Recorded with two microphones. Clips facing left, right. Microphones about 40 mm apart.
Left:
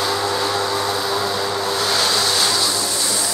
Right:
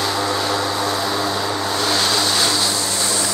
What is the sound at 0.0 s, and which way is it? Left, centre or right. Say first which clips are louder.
Vehicle: even; centre.